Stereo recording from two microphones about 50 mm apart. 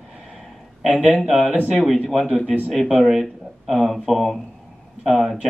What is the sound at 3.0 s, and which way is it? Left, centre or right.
Speech, centre.